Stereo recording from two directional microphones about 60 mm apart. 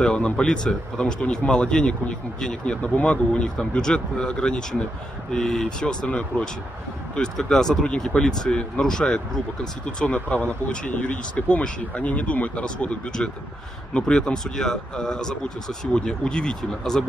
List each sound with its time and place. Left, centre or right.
0.0 s speech: centre